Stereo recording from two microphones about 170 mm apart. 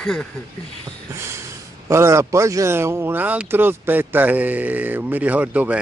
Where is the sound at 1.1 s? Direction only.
15° right (ahead or behind).